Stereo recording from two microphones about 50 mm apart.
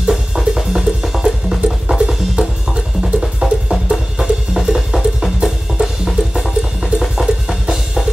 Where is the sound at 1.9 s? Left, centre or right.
Centre.